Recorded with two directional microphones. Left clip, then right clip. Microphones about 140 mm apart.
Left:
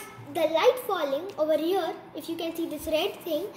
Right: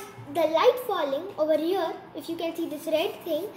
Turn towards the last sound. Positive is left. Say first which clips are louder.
# right 1 dB
turn(degrees=15)  # may be behind; listen again after turning